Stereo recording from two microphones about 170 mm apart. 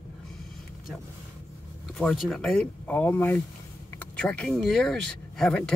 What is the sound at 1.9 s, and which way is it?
Speech, centre (ahead or behind).